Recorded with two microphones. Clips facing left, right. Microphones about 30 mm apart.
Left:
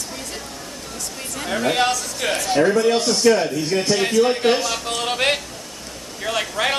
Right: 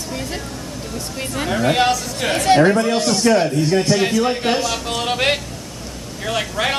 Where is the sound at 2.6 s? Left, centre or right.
Right.